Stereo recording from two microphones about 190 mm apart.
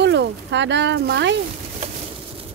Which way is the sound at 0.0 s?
65° right (ahead or behind).